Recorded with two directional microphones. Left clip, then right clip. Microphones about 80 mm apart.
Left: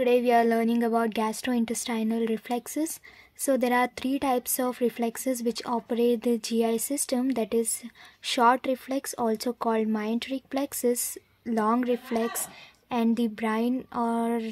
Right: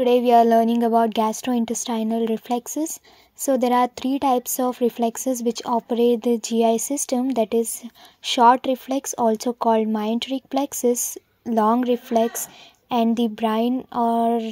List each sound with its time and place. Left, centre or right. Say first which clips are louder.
0.0 s speech: right 6 dB; right